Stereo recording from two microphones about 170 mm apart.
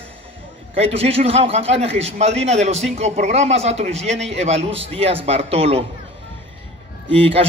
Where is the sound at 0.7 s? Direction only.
35° right (ahead or behind).